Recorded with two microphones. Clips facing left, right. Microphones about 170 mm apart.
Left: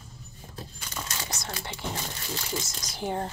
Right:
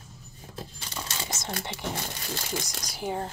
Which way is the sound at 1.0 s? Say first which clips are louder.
Right 3 dB; 20° right (ahead or behind).